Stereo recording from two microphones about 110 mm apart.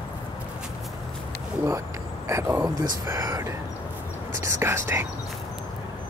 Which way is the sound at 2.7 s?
35° right (ahead or behind).